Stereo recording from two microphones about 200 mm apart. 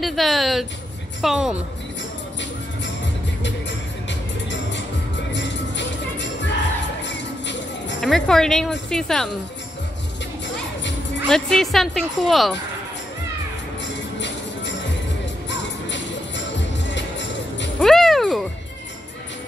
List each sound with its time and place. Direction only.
0.0 s speech: centre (ahead or behind)
4.1 s music: 65° left (ahead or behind)
8.0 s speech: centre (ahead or behind)
11.2 s speech: 5° left (ahead or behind)
14.2 s music: 60° left (ahead or behind)
17.7 s music: centre (ahead or behind)